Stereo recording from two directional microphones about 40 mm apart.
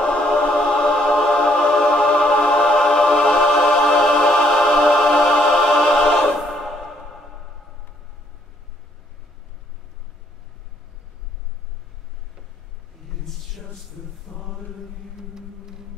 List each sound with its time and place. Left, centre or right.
0.0 s music: left; by 6.6 s centre
14.3 s mantra: centre
15.1 s vehicle: centre